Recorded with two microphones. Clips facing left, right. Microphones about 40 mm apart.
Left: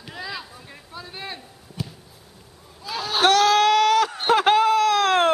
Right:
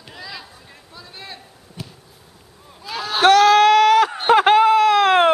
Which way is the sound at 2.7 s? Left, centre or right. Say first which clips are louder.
Right 2 dB; centre.